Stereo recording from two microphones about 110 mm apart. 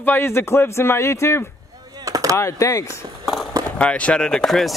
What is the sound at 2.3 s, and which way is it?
Speech, 30° left (ahead or behind).